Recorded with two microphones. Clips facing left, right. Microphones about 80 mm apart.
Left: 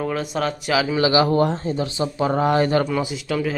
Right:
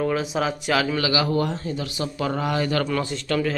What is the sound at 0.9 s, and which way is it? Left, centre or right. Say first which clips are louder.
Speech: left 5 dB; left.